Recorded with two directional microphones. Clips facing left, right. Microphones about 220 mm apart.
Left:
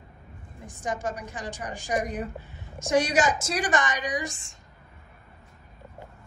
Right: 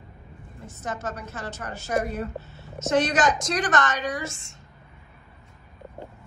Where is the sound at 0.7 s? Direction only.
15° left (ahead or behind).